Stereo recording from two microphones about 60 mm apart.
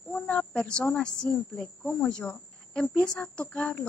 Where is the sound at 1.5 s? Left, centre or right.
Centre.